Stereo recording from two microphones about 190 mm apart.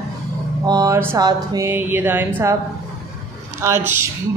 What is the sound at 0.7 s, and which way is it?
A man's voice, 20° right (ahead or behind).